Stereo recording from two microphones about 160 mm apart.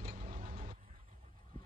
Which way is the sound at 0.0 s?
60° right (ahead or behind).